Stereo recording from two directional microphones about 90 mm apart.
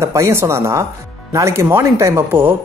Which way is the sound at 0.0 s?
30° right (ahead or behind).